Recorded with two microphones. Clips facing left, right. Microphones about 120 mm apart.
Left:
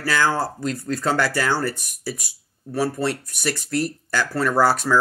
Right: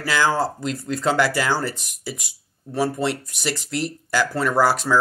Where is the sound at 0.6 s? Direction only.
50° left (ahead or behind).